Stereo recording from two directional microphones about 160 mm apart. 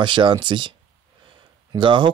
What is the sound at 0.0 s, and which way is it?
Speech, 30° right (ahead or behind).